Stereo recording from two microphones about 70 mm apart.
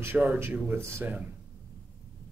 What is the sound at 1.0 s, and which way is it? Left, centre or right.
Speech, right.